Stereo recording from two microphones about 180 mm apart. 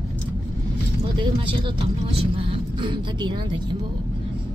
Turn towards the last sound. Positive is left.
turn(degrees=-30)  # may be behind; listen again after turning